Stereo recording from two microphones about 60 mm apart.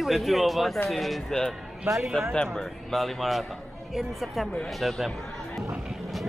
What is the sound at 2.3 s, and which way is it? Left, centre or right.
Speech, centre.